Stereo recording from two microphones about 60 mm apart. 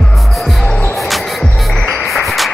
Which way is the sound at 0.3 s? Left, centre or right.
Centre.